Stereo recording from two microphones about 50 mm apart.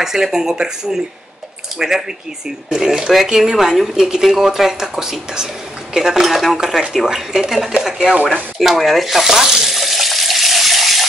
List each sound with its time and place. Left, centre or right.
0.0 s speech: centre
8.2 s speech: right
8.5 s frying: centre